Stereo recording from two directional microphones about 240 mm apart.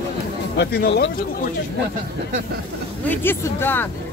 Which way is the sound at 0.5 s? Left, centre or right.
Left.